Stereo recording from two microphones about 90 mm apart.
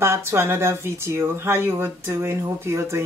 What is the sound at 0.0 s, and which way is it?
Speech, 30° right (ahead or behind).